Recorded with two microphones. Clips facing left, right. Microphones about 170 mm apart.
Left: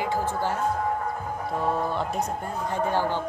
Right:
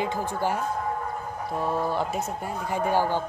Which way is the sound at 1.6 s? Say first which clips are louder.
Right 1 dB; centre (ahead or behind).